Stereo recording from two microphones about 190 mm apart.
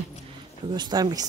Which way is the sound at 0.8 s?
20° right (ahead or behind).